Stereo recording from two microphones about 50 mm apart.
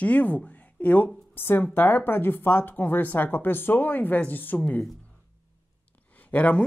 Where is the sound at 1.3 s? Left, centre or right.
Left.